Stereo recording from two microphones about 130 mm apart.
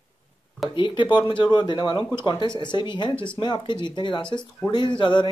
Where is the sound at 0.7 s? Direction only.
40° left (ahead or behind).